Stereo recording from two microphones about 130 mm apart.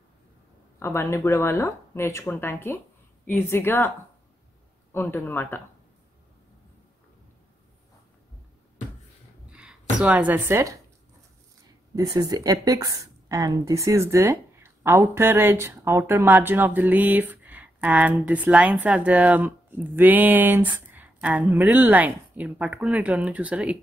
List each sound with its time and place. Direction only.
0.7 s a woman's voice: 20° left (ahead or behind)
4.9 s a woman's voice: 15° left (ahead or behind)
9.5 s speech: 5° right (ahead or behind)
11.9 s a woman's voice: 30° right (ahead or behind); by 23.8 s 10° right (ahead or behind)